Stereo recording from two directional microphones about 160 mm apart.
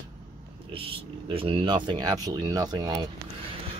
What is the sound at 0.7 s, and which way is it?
Speech, 35° right (ahead or behind).